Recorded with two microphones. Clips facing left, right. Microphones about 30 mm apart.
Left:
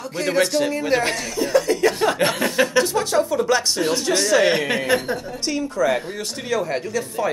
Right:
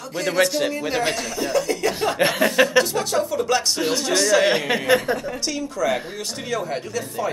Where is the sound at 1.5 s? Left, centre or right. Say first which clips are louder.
Left 4 dB; left.